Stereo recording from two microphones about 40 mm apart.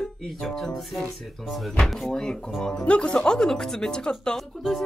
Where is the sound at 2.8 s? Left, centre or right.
Left.